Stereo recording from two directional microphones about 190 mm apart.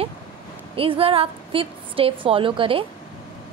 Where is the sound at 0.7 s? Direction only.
30° right (ahead or behind).